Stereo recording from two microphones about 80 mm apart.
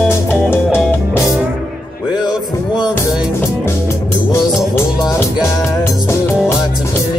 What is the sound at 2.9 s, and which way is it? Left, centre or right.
Music, left.